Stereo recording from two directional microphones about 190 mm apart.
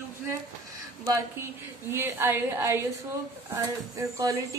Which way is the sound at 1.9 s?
15° right (ahead or behind).